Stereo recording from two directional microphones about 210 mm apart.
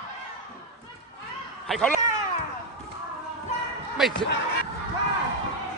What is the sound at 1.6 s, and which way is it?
Speech, centre (ahead or behind).